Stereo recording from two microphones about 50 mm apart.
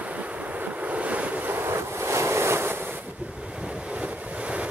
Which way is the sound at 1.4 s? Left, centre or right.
Right.